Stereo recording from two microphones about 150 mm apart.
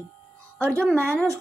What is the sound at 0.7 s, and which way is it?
Speech, 10° left (ahead or behind).